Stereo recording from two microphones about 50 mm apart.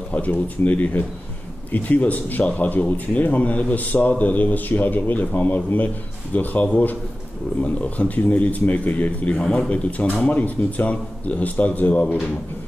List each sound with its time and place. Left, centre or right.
0.1 s speech: left
9.3 s speech: left